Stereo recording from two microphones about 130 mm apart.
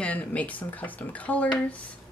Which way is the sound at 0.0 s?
10° left (ahead or behind).